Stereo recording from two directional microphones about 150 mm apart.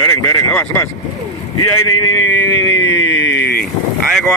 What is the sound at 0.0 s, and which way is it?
Speech, 20° left (ahead or behind).